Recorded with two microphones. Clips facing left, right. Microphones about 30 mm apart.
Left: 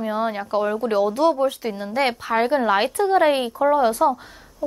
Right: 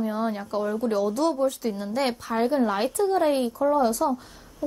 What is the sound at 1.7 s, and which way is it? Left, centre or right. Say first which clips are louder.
Speech: left 4 dB; left.